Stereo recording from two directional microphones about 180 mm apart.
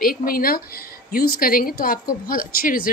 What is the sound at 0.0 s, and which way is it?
A woman's voice, 55° left (ahead or behind).